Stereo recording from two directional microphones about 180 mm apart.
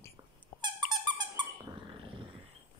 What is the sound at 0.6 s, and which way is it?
Dog, 20° right (ahead or behind).